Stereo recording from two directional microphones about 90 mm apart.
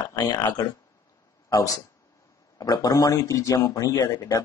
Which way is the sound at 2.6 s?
45° left (ahead or behind).